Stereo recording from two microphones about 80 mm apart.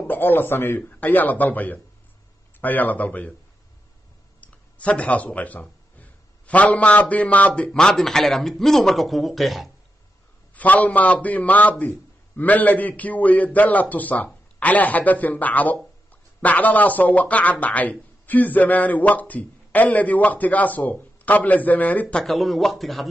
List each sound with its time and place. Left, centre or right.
0.0 s speech: left
4.4 s speech: centre
10.5 s speech: centre
22.2 s a man's voice: centre